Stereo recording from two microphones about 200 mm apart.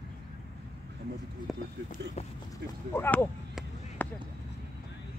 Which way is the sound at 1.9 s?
35° left (ahead or behind).